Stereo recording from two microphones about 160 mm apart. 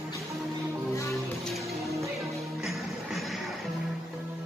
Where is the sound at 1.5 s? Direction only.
Centre (ahead or behind).